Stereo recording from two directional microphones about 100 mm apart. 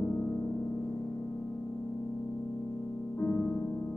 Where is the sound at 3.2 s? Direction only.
15° left (ahead or behind).